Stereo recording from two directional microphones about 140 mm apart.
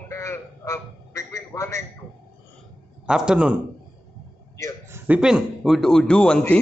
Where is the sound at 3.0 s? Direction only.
5° right (ahead or behind).